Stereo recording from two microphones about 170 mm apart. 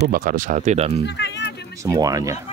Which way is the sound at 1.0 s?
90° left.